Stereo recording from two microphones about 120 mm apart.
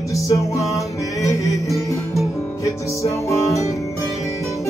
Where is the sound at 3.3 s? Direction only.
25° left (ahead or behind).